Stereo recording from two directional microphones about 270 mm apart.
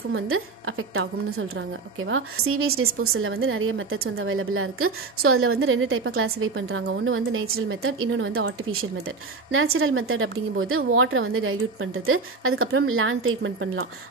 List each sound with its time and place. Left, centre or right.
0.1 s a woman's voice: right